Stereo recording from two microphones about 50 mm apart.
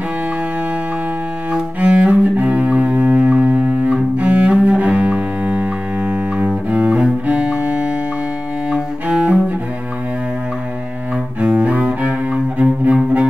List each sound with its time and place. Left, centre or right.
1.5 s cello: right
2.3 s double bass: right
9.0 s cello: right
11.4 s cello: right